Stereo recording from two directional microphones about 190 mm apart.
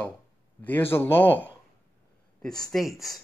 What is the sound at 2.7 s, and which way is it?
Speech, centre (ahead or behind).